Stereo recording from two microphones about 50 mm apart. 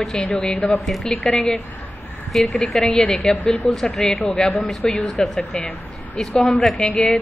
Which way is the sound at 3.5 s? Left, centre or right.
Centre.